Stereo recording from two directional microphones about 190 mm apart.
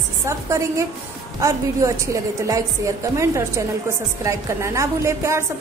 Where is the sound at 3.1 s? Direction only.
15° right (ahead or behind).